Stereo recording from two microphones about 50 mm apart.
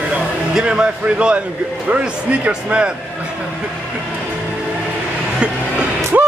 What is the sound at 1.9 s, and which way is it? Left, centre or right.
Speech, right.